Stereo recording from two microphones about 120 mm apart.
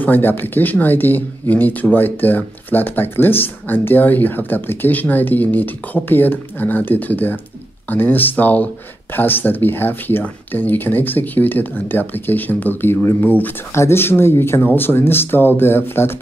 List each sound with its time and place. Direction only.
0.0 s speech: 15° left (ahead or behind)